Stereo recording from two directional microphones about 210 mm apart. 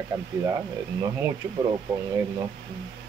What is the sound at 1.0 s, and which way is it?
Speech, 15° right (ahead or behind).